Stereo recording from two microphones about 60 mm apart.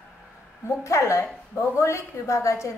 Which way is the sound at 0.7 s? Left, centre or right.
Left.